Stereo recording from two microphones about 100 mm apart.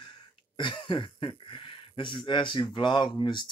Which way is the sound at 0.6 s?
50° left (ahead or behind).